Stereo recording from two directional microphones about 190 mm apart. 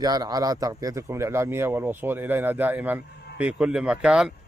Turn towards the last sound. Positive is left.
turn(degrees=-5)  # may be behind; listen again after turning